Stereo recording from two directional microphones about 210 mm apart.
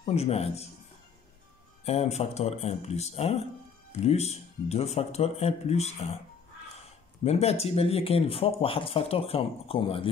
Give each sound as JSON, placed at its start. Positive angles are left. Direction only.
{"t": 0.0, "sound": "speech", "side_deg": 30}
{"t": 1.9, "sound": "speech", "side_deg": 30}
{"t": 7.2, "sound": "speech", "side_deg": 30}